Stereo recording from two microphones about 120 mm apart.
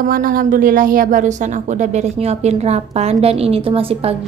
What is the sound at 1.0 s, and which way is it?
A woman's voice, 90° right.